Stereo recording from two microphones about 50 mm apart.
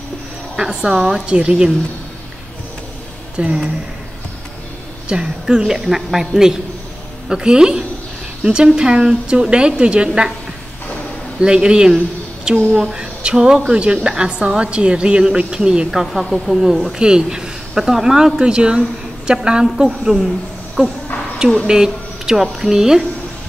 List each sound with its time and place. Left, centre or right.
0.6 s speech: centre
1.2 s speech: right
3.3 s speech: right
5.0 s speech: centre
11.3 s speech: centre